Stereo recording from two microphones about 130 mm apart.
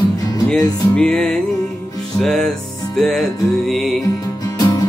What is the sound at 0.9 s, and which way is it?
Music, 10° left (ahead or behind).